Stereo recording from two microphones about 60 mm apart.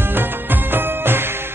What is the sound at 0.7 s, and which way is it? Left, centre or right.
Music, right.